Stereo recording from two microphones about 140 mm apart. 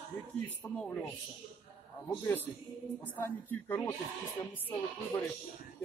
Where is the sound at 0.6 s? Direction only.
10° left (ahead or behind).